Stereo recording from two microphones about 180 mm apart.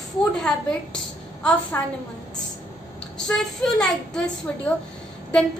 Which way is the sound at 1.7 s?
15° left (ahead or behind).